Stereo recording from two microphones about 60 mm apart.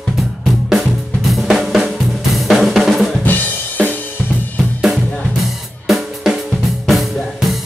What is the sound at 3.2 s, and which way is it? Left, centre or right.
Drum, left.